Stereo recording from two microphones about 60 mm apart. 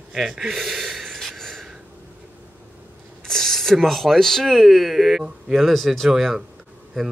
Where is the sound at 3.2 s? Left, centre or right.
Centre.